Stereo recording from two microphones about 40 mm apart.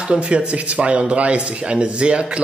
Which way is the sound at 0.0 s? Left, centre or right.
Right.